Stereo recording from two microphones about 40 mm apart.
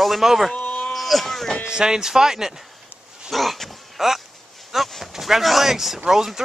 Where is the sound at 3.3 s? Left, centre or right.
Centre.